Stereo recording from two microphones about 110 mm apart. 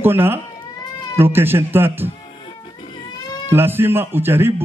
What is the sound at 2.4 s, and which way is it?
Music, 55° left (ahead or behind).